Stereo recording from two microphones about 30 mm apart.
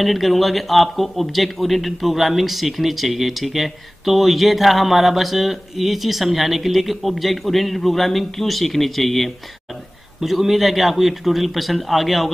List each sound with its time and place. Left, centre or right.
0.0 s speech: centre